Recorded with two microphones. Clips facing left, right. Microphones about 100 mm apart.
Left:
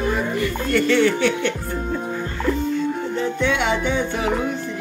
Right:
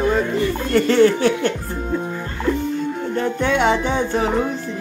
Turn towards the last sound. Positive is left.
turn(degrees=-35)  # may be behind; listen again after turning